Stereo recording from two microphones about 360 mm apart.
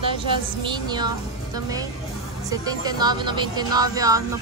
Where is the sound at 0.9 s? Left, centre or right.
Centre.